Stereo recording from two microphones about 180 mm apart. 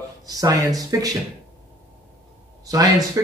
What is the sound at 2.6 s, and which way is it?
Speech, 20° right (ahead or behind).